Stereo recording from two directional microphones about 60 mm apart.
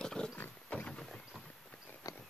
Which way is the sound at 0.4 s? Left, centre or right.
Left.